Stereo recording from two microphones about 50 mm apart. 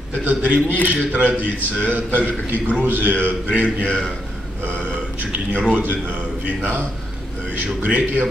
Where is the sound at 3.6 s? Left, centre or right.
Left.